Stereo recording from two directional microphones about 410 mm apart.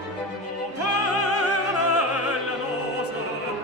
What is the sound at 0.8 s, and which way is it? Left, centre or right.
Music, left.